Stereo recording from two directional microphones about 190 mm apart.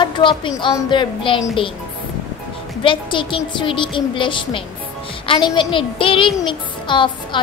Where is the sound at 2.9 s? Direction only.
25° left (ahead or behind).